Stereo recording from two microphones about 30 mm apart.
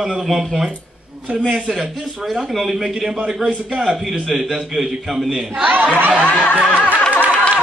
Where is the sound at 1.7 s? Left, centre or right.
Centre.